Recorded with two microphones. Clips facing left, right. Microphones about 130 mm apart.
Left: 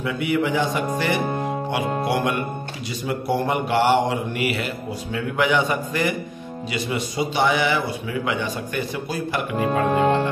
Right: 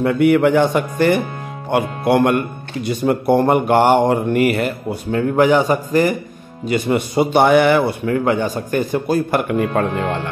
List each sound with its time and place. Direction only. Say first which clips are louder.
0.0 s a man's voice: right 9 dB; 55° right (ahead or behind)
6.7 s a man's voice: right 9 dB; 55° right (ahead or behind)